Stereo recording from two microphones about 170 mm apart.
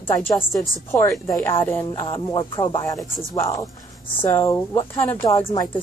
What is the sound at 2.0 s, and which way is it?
Music, 25° left (ahead or behind).